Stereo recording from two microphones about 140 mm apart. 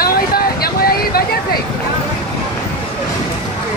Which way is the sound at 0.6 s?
90° left.